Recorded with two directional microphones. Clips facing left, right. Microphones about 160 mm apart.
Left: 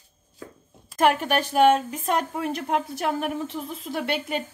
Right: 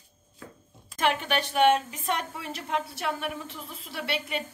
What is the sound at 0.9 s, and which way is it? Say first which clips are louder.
A woman's voice: left 6 dB; 45° left (ahead or behind).